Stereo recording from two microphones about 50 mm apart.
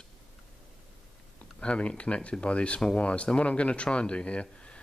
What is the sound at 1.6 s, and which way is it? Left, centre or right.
Speech, left.